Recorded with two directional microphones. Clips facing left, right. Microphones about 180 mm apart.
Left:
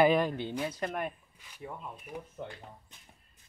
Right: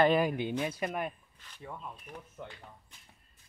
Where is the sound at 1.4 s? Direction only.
10° left (ahead or behind).